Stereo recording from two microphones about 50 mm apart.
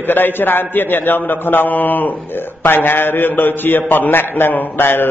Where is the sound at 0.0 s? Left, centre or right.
Left.